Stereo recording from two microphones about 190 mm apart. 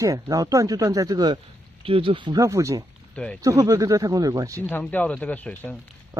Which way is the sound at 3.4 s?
15° right (ahead or behind).